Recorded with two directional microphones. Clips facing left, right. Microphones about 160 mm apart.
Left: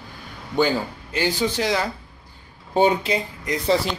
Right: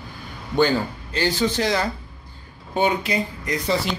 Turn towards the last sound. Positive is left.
turn(degrees=25)  # may be behind; listen again after turning